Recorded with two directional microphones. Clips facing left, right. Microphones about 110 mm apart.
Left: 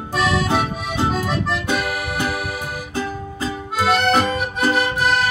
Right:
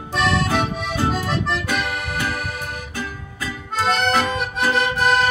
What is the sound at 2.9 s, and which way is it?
Music, 30° left (ahead or behind).